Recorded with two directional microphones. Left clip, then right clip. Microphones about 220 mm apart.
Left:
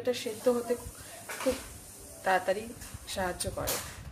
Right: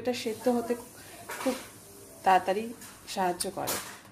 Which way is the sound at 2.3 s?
15° right (ahead or behind).